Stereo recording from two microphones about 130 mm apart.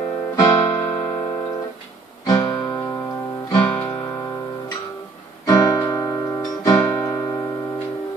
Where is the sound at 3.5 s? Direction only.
10° left (ahead or behind).